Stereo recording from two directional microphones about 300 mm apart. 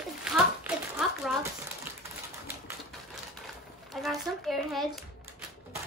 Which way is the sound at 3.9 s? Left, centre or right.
Centre.